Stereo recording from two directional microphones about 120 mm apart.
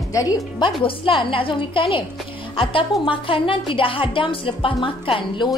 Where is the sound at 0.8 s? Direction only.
45° left (ahead or behind).